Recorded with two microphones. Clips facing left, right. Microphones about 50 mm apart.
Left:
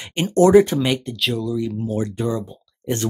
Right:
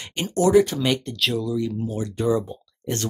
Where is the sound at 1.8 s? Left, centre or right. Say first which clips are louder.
Left 4 dB; left.